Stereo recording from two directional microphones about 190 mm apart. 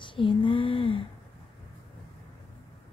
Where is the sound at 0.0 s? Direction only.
25° left (ahead or behind).